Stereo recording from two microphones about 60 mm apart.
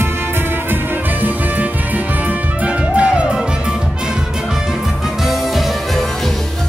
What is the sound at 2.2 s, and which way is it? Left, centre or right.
Music, right.